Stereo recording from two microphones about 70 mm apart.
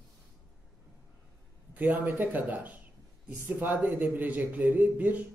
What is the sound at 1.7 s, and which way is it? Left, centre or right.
A man's voice, right.